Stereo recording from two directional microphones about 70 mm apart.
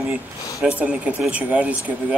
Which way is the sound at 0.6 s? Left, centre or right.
Centre.